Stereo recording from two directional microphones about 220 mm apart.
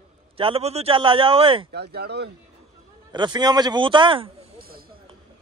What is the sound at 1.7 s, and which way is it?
Speech, 45° right (ahead or behind).